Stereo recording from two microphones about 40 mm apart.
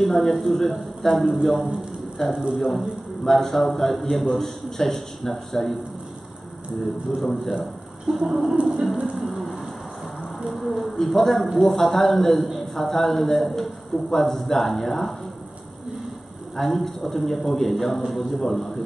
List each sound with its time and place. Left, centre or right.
0.0 s a man's voice: centre
7.1 s a man's voice: centre
8.1 s music: right
8.9 s a sound: right
9.2 s a sound: centre
11.6 s a man's voice: centre
16.5 s a man's voice: centre